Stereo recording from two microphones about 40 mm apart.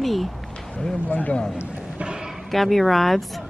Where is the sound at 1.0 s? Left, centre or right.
Left.